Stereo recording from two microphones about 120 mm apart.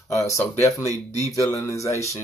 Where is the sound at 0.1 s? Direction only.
25° left (ahead or behind).